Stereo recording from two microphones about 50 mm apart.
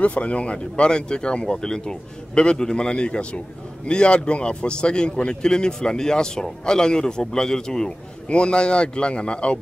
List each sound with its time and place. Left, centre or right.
0.0 s a man's voice: left